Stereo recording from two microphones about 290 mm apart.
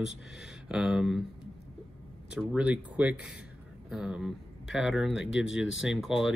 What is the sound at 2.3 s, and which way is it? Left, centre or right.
Speech, centre.